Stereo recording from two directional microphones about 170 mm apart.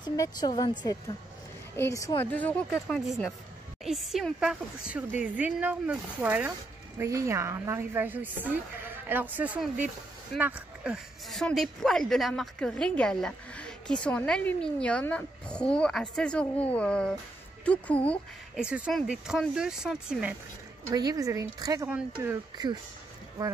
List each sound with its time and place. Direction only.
0.0 s a woman's voice: 25° left (ahead or behind); by 18.2 s 10° left (ahead or behind)
18.6 s speech: 5° right (ahead or behind)
20.8 s a woman's voice: 20° right (ahead or behind)